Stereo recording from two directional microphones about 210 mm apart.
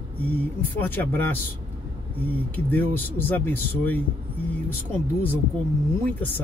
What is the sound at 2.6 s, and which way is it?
Speech, 10° left (ahead or behind).